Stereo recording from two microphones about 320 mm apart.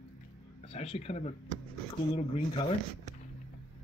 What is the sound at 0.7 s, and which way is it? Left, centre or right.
Speech, centre.